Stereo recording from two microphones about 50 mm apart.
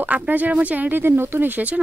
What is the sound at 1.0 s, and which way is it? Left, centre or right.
Speech, right.